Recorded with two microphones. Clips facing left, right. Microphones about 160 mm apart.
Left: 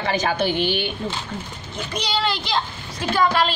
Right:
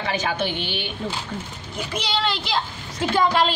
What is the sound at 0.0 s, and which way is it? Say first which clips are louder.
Speech: left 3 dB; 40° left (ahead or behind).